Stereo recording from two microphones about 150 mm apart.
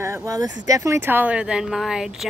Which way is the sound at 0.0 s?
20° right (ahead or behind).